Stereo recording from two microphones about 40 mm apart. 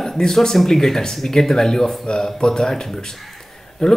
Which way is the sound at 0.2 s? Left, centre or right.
Centre.